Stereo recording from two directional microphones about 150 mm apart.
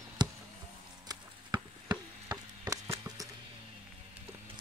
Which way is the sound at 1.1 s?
25° right (ahead or behind).